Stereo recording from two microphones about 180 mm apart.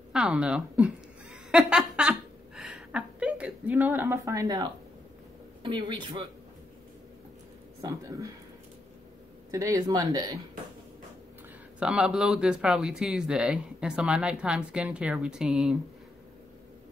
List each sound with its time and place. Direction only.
0.1 s a sound: 5° right (ahead or behind)
5.6 s speech: 25° right (ahead or behind)
9.5 s speech: 20° right (ahead or behind)
11.8 s speech: 5° right (ahead or behind)